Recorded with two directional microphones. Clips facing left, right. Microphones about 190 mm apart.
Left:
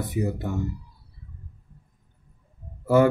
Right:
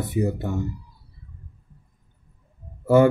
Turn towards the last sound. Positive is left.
turn(degrees=-25)  # may be behind; listen again after turning